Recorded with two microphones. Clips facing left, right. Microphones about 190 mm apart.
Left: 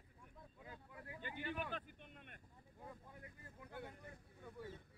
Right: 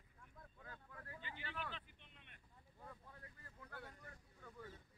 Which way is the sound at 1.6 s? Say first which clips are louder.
Left 4 dB; 50° left (ahead or behind).